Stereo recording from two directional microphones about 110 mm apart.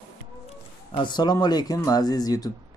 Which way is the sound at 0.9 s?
40° left (ahead or behind).